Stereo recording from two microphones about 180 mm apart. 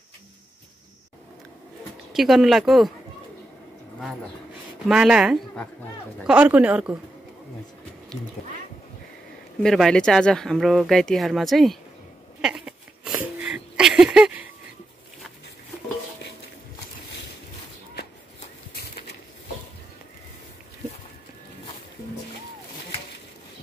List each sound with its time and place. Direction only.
2.1 s speech: centre (ahead or behind)
4.8 s speech: 5° right (ahead or behind)
9.6 s speech: 5° left (ahead or behind)
12.4 s a sound: 5° right (ahead or behind)